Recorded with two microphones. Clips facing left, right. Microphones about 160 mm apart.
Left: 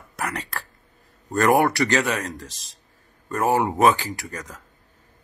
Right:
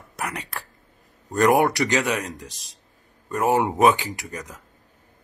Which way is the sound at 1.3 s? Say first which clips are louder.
Even; 15° right (ahead or behind).